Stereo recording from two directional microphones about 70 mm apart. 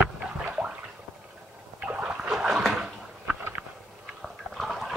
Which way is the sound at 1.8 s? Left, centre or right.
Centre.